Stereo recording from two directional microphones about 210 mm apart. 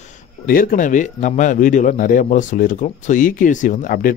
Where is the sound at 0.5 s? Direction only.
40° left (ahead or behind).